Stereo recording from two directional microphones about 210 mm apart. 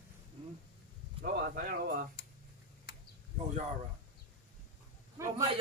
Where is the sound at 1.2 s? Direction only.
45° right (ahead or behind).